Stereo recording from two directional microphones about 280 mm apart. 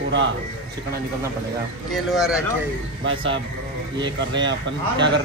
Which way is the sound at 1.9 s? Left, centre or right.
Centre.